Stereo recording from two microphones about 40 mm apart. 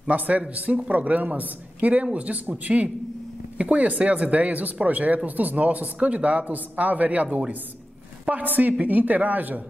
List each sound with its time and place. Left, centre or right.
0.4 s a man's voice: right